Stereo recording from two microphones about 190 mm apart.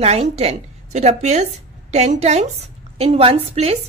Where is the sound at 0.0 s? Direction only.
35° right (ahead or behind).